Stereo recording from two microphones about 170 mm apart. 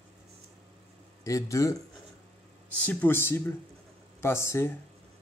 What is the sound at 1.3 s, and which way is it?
Speech, 20° left (ahead or behind).